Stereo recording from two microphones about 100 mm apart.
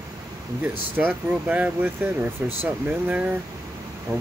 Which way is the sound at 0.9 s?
15° right (ahead or behind).